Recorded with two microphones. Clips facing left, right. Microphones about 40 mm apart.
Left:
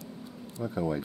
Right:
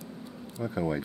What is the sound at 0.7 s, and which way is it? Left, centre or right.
Speech, centre.